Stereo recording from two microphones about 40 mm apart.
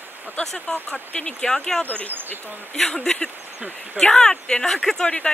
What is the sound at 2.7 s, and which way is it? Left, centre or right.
Speech, centre.